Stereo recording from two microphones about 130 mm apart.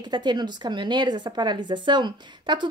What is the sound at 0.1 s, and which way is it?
Speech, 35° right (ahead or behind).